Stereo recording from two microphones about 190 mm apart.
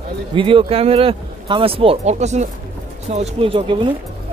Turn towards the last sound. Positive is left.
turn(degrees=-25)  # may be behind; listen again after turning